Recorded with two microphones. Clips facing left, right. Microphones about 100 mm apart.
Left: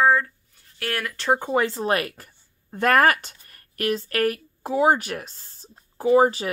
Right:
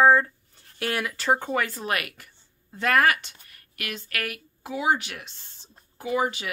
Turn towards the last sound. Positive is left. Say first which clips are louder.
# left 9 dB
turn(degrees=35)  # may be behind; listen again after turning